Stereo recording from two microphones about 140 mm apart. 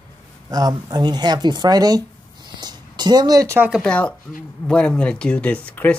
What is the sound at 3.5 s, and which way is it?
Speech, 10° right (ahead or behind).